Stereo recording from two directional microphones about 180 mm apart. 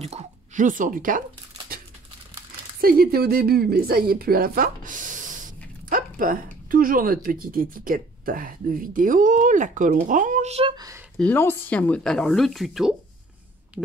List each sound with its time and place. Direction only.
0.0 s speech: 40° right (ahead or behind)
2.8 s a woman's voice: 55° right (ahead or behind); by 10.7 s 35° right (ahead or behind)
11.1 s speech: 10° left (ahead or behind)